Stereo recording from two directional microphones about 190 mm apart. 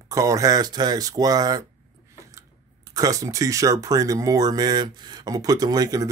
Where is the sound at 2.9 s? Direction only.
20° right (ahead or behind).